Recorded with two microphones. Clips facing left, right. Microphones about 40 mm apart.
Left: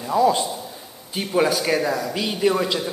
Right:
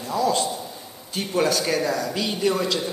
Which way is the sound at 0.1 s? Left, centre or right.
Centre.